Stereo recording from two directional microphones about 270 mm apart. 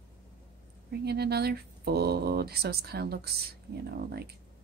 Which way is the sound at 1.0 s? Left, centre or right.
Right.